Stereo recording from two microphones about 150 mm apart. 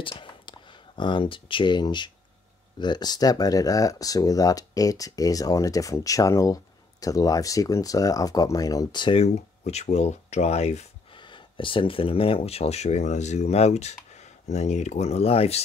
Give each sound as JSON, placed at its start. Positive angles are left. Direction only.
{"t": 0.2, "sound": "speech", "side_deg": 30}
{"t": 11.1, "sound": "speech", "side_deg": 30}